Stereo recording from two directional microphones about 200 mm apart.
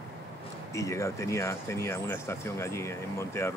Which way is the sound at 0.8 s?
15° left (ahead or behind).